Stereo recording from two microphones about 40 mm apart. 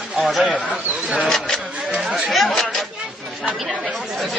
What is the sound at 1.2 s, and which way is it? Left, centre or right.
Speech, centre.